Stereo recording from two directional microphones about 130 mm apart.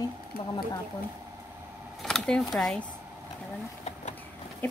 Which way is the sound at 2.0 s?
5° left (ahead or behind).